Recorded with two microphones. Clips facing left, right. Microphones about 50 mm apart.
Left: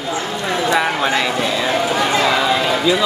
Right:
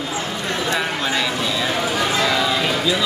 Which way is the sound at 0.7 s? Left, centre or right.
Left.